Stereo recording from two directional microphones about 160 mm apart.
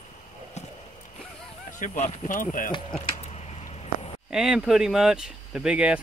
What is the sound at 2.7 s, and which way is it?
Speech, 30° left (ahead or behind).